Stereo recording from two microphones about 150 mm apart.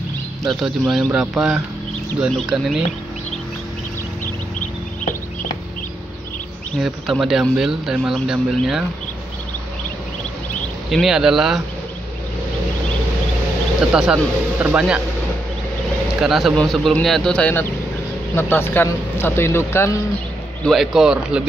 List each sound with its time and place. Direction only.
0.5 s speech: centre (ahead or behind)
6.8 s speech: centre (ahead or behind)
10.9 s speech: centre (ahead or behind)
13.9 s speech: 5° right (ahead or behind)
16.2 s speech: centre (ahead or behind); by 20.0 s 15° left (ahead or behind)
20.6 s speech: centre (ahead or behind)